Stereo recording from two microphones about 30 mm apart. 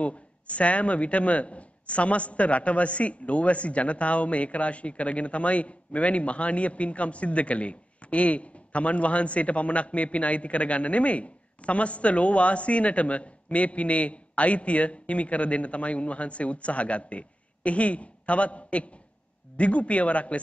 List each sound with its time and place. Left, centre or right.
0.0 s speech: left